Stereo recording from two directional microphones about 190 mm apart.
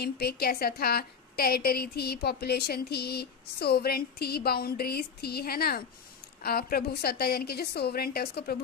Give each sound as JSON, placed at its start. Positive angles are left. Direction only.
{"t": 0.0, "sound": "a woman's voice", "side_deg": 55}